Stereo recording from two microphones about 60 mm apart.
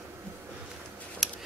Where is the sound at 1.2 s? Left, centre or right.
Centre.